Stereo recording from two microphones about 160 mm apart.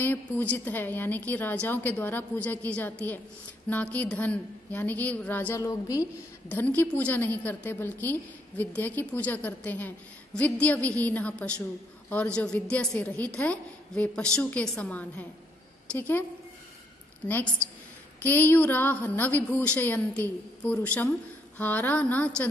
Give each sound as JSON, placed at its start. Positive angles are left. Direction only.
{"t": 0.0, "sound": "a woman's voice", "side_deg": 10}
{"t": 17.2, "sound": "a woman's voice", "side_deg": 25}
{"t": 18.2, "sound": "a woman's voice", "side_deg": 10}